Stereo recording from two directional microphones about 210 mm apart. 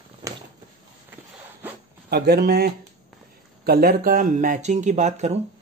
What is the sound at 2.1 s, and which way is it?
Speech, 50° right (ahead or behind).